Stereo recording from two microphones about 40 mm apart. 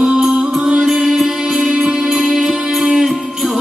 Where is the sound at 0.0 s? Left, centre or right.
Centre.